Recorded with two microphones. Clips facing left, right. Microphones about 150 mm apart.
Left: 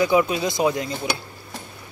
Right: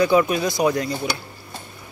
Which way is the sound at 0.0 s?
15° left (ahead or behind).